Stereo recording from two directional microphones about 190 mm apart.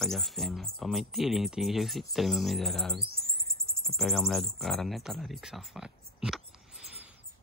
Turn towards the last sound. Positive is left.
turn(degrees=-5)  # may be behind; listen again after turning